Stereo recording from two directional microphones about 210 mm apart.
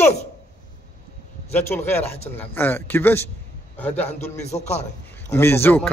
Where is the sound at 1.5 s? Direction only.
10° left (ahead or behind).